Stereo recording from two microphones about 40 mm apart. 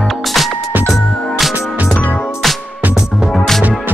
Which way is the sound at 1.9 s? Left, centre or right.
Left.